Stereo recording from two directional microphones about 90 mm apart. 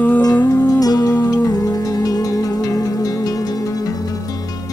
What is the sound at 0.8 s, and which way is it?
Music, 45° left (ahead or behind).